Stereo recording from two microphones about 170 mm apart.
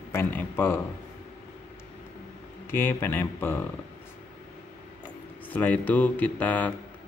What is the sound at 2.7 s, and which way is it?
Speech, 15° left (ahead or behind).